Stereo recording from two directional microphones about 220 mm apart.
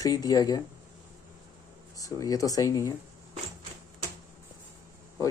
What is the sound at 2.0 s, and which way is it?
Speech, 15° left (ahead or behind).